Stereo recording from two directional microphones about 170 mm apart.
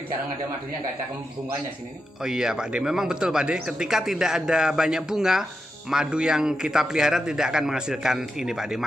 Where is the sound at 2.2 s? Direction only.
5° right (ahead or behind).